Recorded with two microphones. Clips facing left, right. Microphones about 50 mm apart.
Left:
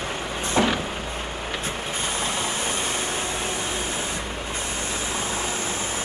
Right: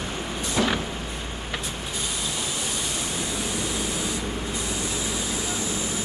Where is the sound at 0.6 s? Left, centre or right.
Left.